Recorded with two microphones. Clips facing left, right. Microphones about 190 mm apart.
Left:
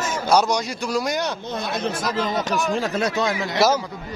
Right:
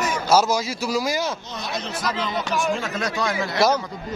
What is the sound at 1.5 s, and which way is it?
Speech, 55° left (ahead or behind).